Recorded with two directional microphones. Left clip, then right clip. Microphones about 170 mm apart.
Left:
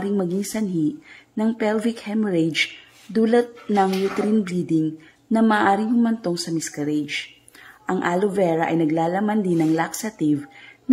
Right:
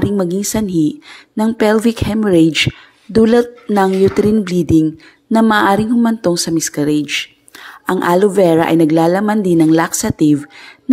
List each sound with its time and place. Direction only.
0.0 s speech: 25° right (ahead or behind)
4.5 s a sound: 30° right (ahead or behind)
5.3 s speech: 30° right (ahead or behind)